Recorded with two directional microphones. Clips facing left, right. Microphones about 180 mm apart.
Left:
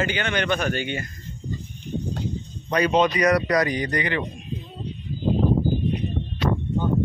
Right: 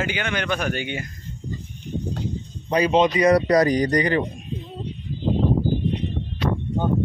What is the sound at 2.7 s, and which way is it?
Speech, 25° right (ahead or behind).